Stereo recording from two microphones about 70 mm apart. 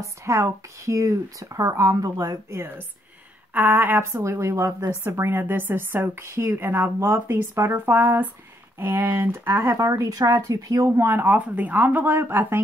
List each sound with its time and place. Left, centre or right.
0.0 s speech: right
3.5 s a woman's voice: right
11.1 s speech: right